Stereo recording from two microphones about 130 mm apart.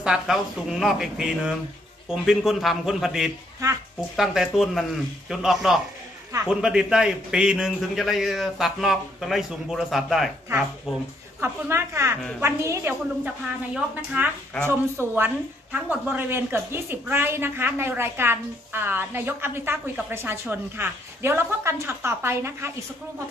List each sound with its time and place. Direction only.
0.0 s a man's voice: 5° right (ahead or behind)
11.4 s a woman's voice: 20° right (ahead or behind)